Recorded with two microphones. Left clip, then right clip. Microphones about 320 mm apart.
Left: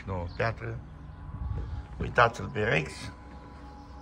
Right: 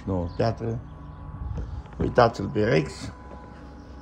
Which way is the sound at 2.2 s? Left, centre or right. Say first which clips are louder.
Right 4 dB; centre.